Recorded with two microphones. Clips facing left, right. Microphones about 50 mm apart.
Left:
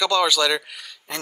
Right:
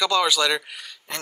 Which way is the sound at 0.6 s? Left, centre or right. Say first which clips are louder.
Right 1 dB; right.